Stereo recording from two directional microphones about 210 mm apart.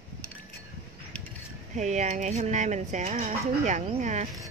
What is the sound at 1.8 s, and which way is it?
Speech, 35° right (ahead or behind).